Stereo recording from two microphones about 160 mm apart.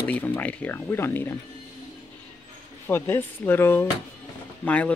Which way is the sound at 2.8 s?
15° left (ahead or behind).